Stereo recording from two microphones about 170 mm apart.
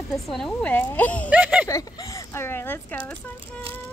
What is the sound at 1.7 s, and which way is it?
Speech, 20° left (ahead or behind).